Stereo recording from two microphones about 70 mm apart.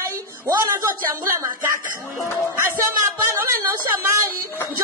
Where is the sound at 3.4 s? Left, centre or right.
Right.